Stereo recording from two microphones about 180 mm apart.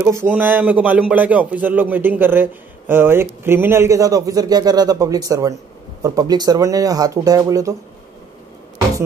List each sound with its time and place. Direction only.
0.0 s speech: 15° right (ahead or behind)